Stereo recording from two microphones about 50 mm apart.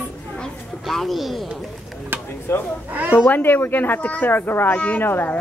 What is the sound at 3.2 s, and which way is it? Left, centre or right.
Speech, left.